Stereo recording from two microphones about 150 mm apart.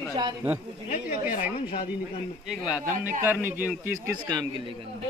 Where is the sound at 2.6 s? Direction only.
5° right (ahead or behind).